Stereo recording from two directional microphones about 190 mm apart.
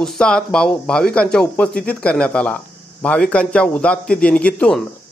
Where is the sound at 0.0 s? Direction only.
5° left (ahead or behind).